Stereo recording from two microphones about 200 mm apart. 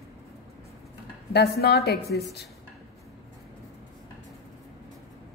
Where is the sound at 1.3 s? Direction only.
50° left (ahead or behind).